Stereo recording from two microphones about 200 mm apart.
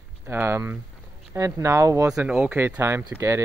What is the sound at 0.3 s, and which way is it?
Speech, 10° right (ahead or behind).